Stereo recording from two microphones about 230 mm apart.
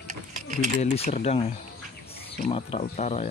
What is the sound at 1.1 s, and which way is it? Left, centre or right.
Speech, left.